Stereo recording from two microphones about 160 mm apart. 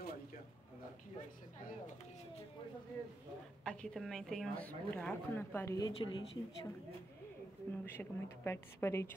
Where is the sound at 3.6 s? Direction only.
5° left (ahead or behind).